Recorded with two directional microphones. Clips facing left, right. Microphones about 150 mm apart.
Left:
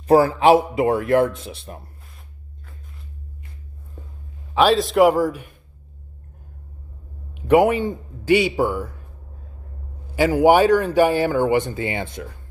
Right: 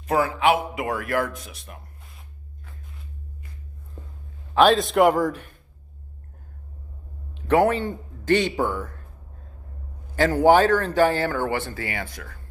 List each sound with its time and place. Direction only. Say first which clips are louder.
0.0 s a man's voice: left 7 dB; 35° left (ahead or behind)
4.6 s a man's voice: left 2 dB; centre (ahead or behind)
7.3 s speech: left 4 dB; 15° left (ahead or behind)
10.1 s speech: left 2 dB; 10° left (ahead or behind)